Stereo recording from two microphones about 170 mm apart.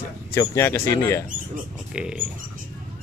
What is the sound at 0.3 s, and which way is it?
Speech, 15° left (ahead or behind).